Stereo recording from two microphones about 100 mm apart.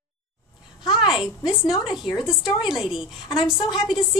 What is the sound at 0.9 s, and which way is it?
A woman's voice, 5° right (ahead or behind).